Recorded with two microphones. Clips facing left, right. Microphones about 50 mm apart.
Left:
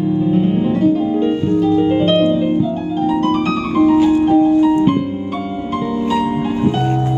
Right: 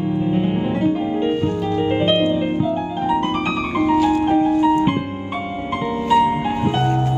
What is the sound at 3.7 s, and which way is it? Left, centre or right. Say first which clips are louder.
Music: left 5 dB; right.